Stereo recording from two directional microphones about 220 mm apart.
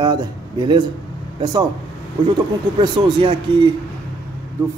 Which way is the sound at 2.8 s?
20° right (ahead or behind).